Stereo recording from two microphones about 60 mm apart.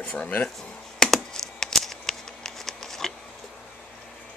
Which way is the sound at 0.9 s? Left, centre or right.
Centre.